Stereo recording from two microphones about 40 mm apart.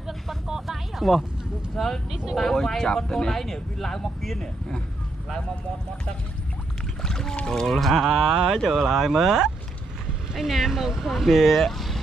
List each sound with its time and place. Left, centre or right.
0.5 s a sound: centre
2.0 s speech: centre
2.3 s speech: centre
4.4 s speech: centre
7.0 s speech: centre
7.6 s speech: centre
8.1 s speech: centre
11.6 s vehicle: centre